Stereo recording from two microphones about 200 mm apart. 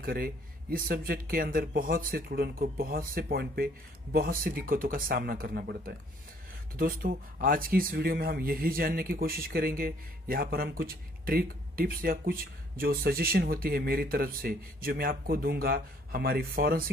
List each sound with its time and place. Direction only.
0.0 s speech: 50° right (ahead or behind)